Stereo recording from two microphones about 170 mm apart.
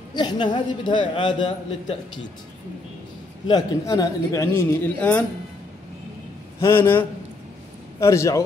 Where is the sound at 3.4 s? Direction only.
25° left (ahead or behind).